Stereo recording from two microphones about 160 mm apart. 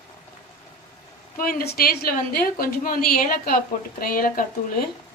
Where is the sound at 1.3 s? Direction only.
65° left (ahead or behind).